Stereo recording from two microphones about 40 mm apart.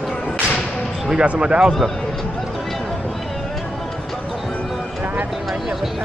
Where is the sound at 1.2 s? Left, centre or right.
Right.